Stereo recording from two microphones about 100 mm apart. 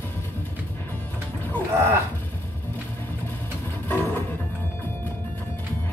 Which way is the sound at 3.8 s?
20° left (ahead or behind).